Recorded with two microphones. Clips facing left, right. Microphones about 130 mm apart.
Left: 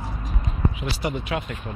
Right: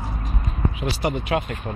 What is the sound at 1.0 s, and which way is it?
Speech, 65° right (ahead or behind).